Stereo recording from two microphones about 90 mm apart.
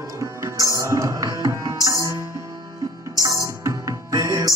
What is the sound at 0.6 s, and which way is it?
Music, 35° right (ahead or behind).